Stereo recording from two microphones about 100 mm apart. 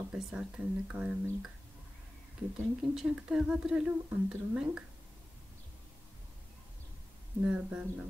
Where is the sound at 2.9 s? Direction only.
5° right (ahead or behind).